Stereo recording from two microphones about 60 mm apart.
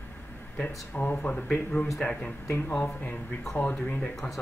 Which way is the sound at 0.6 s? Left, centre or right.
Left.